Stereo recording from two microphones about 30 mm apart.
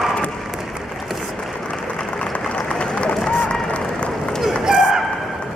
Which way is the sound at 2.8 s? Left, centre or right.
Left.